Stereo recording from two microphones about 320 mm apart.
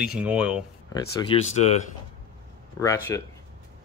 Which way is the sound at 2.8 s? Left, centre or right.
Centre.